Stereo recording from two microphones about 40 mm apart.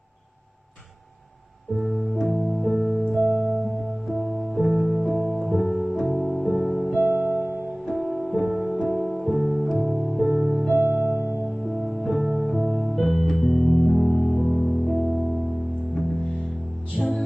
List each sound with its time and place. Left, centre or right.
1.8 s music: centre
3.2 s music: right
4.6 s music: centre
12.3 s music: centre
15.9 s music: centre
17.0 s music: centre